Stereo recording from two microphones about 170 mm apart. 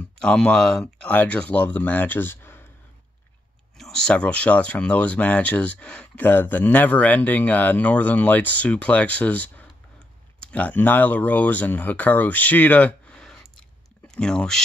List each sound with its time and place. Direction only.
0.2 s speech: 5° left (ahead or behind)
3.7 s speech: 5° left (ahead or behind)